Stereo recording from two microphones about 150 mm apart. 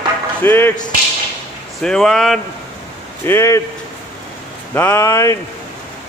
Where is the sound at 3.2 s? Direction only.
15° left (ahead or behind).